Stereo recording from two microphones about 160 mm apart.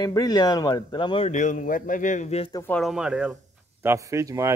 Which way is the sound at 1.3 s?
50° left (ahead or behind).